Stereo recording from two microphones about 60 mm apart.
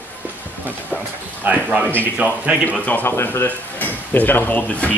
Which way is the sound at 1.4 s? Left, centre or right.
Right.